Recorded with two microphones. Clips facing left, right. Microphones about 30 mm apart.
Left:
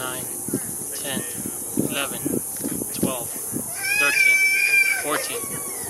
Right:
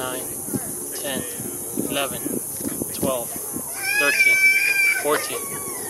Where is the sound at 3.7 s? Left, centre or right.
Centre.